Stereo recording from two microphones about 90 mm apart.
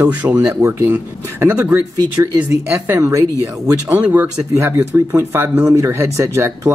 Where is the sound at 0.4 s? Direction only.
35° right (ahead or behind).